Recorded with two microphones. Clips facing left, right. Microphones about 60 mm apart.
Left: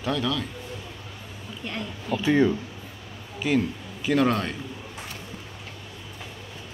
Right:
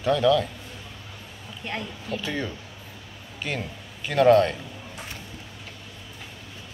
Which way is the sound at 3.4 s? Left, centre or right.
Centre.